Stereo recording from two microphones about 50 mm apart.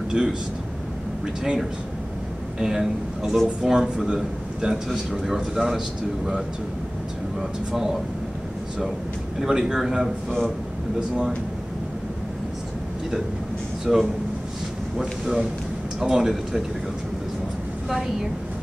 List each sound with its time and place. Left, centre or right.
0.1 s speech: centre
1.4 s a man's voice: centre
7.7 s speech: centre
9.4 s speech: centre
13.9 s a man's voice: centre
17.8 s a woman's voice: centre